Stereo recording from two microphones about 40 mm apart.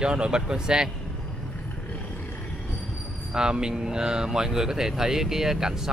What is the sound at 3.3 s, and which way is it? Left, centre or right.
Speech, centre.